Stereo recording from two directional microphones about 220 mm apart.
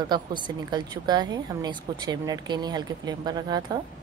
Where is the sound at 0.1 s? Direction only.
20° right (ahead or behind).